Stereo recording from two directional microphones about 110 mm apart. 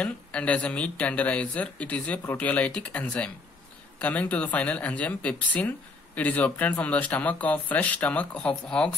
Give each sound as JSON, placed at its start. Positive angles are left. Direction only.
{"t": 0.0, "sound": "speech", "side_deg": 10}